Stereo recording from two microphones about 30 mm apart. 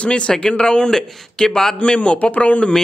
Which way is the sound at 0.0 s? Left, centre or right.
Left.